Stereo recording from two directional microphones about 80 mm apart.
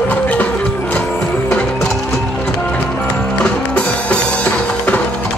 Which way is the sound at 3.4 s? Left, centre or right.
Centre.